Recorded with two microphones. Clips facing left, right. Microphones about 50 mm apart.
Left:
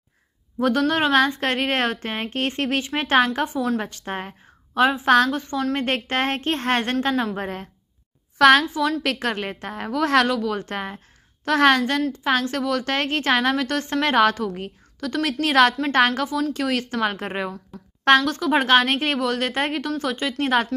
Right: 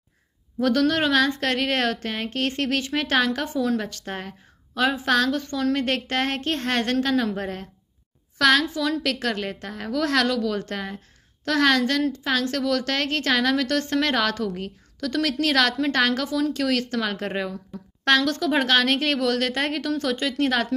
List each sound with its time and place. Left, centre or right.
0.6 s a woman's voice: centre
5.3 s a woman's voice: centre